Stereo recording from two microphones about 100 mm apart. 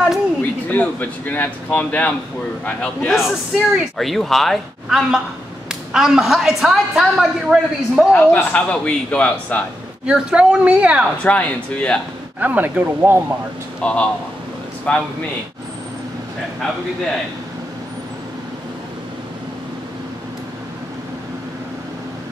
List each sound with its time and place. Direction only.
0.4 s a man's voice: 15° left (ahead or behind)
3.1 s a woman's voice: centre (ahead or behind)
8.1 s a man's voice: 20° left (ahead or behind)
10.0 s a woman's voice: 10° right (ahead or behind)
11.2 s a man's voice: 15° left (ahead or behind)
12.4 s a woman's voice: 15° right (ahead or behind)
13.7 s a man's voice: 10° left (ahead or behind)